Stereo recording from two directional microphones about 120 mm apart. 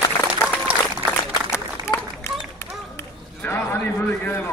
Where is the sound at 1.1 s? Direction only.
25° left (ahead or behind).